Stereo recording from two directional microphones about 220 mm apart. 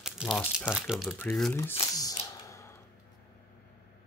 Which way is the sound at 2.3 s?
15° left (ahead or behind).